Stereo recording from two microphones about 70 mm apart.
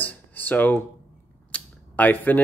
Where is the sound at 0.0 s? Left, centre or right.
Left.